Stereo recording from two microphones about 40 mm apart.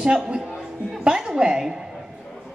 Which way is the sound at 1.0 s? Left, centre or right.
Centre.